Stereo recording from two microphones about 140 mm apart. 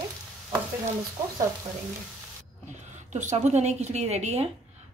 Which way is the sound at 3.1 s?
55° right (ahead or behind).